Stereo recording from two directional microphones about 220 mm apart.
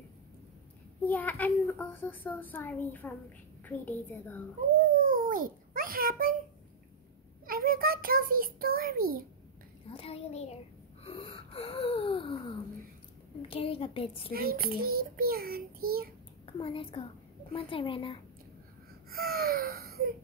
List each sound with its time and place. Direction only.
1.0 s a child's voice: 5° left (ahead or behind)
4.8 s a child's voice: 40° right (ahead or behind)
7.4 s a child's voice: 40° right (ahead or behind)
9.8 s a woman's voice: 25° left (ahead or behind)
11.1 s wheeze: 25° left (ahead or behind)
13.5 s a woman's voice: 25° left (ahead or behind)
14.3 s a child's voice: 45° right (ahead or behind)
16.4 s a woman's voice: 25° left (ahead or behind)
19.0 s baby cry: 45° right (ahead or behind)